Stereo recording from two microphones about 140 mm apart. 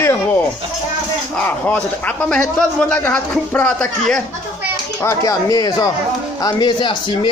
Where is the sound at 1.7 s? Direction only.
10° left (ahead or behind).